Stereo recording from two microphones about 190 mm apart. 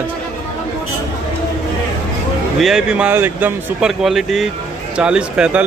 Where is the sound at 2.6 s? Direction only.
5° right (ahead or behind).